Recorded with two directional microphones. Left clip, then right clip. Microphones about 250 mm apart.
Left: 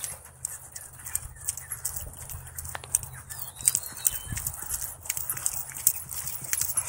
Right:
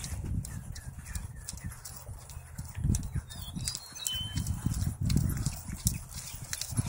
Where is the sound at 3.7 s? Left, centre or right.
Centre.